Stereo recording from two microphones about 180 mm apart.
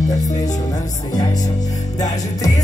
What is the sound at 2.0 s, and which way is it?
Music, 20° left (ahead or behind).